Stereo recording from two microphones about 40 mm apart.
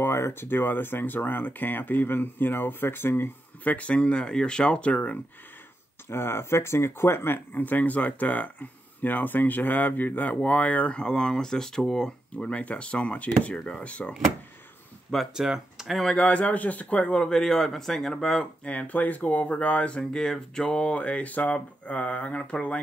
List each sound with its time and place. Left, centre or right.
0.0 s speech: left
3.6 s speech: left
6.0 s speech: left
11.0 s speech: left
12.4 s speech: left
15.3 s speech: centre
15.9 s speech: centre
16.2 s speech: left
17.1 s speech: centre
18.6 s speech: left
18.9 s speech: left
20.0 s speech: centre; by 22.8 s left